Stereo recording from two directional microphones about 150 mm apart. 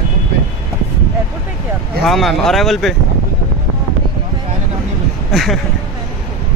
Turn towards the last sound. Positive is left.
turn(degrees=0)  # may be behind; listen again after turning